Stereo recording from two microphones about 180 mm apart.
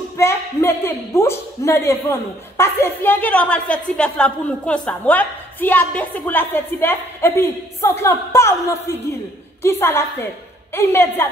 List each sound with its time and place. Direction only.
0.2 s speech: 15° left (ahead or behind)